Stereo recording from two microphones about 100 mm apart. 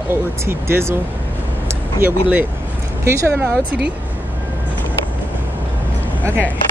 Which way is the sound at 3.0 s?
25° right (ahead or behind).